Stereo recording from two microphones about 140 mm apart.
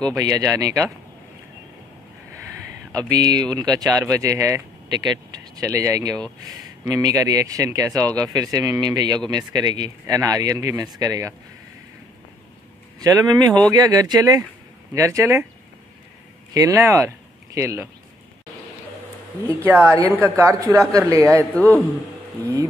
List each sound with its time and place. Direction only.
0.1 s speech: 25° right (ahead or behind)
2.9 s speech: 25° right (ahead or behind)
13.0 s speech: 25° right (ahead or behind)
16.5 s speech: 20° right (ahead or behind)
19.4 s speech: 15° right (ahead or behind)
21.5 s a man's voice: 10° left (ahead or behind)